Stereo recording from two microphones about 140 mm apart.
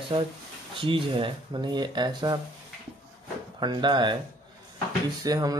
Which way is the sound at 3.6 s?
35° right (ahead or behind).